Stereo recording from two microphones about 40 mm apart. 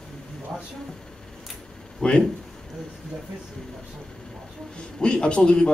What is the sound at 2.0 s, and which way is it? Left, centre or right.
Speech, left.